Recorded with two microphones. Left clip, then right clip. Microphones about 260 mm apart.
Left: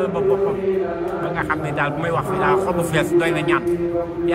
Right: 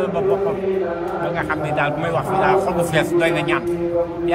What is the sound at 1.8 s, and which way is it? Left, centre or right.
A man's voice, centre.